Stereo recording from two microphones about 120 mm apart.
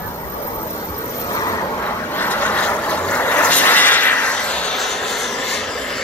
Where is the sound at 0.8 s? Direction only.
25° left (ahead or behind).